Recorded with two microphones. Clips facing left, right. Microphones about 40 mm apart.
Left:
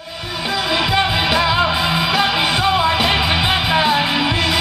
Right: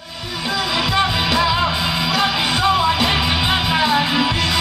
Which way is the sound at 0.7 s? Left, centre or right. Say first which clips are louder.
Left 2 dB; centre.